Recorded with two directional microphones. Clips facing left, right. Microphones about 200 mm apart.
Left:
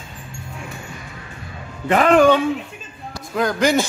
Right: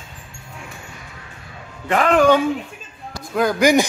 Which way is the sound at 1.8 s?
5° left (ahead or behind).